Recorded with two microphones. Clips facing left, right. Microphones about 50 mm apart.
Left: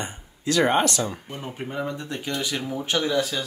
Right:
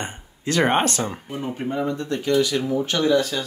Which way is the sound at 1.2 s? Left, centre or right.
Centre.